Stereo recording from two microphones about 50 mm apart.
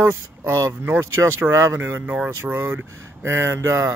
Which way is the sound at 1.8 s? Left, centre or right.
Right.